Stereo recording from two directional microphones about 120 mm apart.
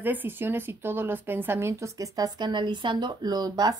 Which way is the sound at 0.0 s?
15° right (ahead or behind).